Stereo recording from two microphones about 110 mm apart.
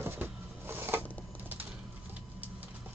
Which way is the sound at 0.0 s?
20° right (ahead or behind).